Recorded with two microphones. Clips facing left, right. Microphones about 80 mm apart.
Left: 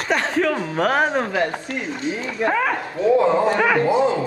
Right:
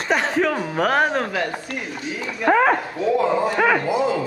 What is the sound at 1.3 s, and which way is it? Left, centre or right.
Speech, left.